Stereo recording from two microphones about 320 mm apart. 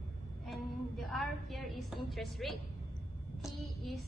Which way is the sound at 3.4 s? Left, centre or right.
Centre.